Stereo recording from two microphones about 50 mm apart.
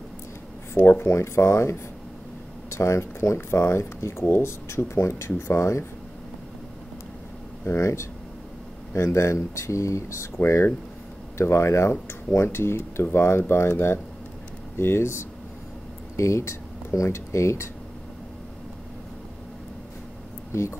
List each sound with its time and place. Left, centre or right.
0.7 s speech: left
1.1 s speech: left
7.6 s speech: left
10.3 s speech: left
11.3 s speech: left
12.5 s speech: left
16.2 s speech: left